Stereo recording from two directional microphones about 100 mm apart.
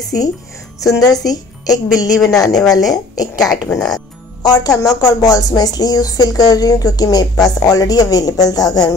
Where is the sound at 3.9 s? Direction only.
40° left (ahead or behind).